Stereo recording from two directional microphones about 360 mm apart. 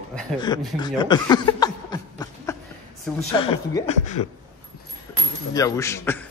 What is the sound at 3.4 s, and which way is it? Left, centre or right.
Speech, centre.